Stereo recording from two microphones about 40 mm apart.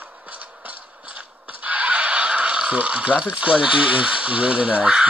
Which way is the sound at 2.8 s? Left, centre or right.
Right.